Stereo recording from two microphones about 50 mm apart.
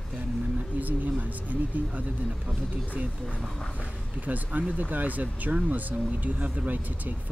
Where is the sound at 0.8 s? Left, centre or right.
Right.